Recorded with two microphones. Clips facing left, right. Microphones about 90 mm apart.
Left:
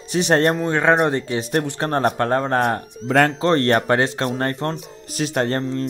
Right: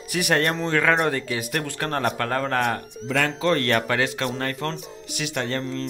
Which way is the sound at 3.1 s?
45° left (ahead or behind).